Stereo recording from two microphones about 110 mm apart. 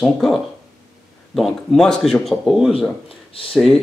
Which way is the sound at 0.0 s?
Centre (ahead or behind).